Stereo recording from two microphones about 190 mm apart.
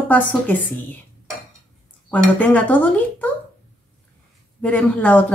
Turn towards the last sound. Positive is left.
turn(degrees=10)  # may be behind; listen again after turning